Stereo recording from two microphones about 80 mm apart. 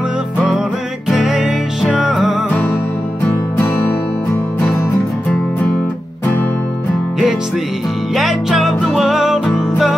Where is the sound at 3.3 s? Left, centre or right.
Left.